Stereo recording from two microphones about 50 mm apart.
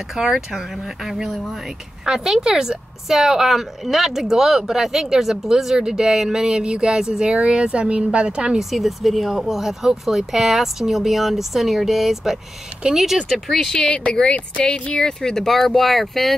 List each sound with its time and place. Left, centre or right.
0.1 s a woman's voice: centre
8.5 s speech: centre
13.7 s speech: centre